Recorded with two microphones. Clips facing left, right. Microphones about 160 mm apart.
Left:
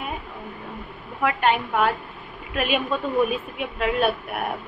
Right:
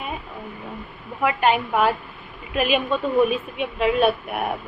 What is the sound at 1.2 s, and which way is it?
Speech, 5° right (ahead or behind).